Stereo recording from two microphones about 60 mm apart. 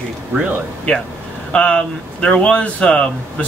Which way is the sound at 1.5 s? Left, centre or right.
Centre.